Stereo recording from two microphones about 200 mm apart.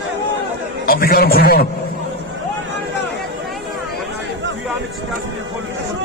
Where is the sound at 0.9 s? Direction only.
50° left (ahead or behind).